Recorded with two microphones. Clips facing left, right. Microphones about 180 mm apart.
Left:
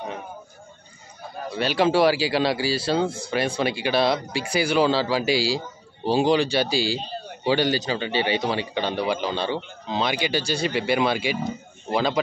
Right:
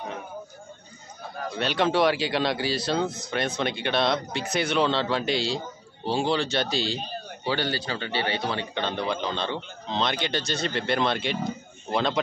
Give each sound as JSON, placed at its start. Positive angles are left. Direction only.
{"t": 1.5, "sound": "speech", "side_deg": 5}
{"t": 3.0, "sound": "speech", "side_deg": 30}
{"t": 3.3, "sound": "speech", "side_deg": 10}
{"t": 6.0, "sound": "a man's voice", "side_deg": 15}